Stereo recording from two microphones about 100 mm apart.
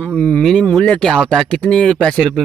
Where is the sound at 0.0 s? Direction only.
15° left (ahead or behind).